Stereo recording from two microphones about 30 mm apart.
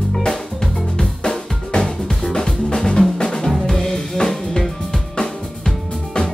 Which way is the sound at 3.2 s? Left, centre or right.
Left.